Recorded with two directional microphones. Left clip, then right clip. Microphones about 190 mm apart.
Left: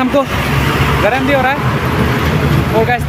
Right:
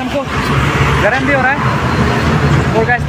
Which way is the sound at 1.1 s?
10° left (ahead or behind).